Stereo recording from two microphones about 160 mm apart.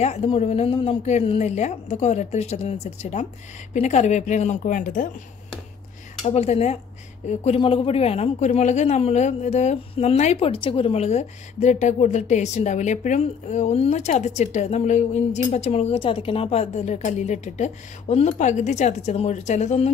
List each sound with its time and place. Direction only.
0.0 s speech: 45° left (ahead or behind)
6.2 s speech: 40° left (ahead or behind)